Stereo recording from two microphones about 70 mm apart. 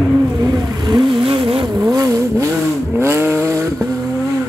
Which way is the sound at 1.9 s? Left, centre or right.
Right.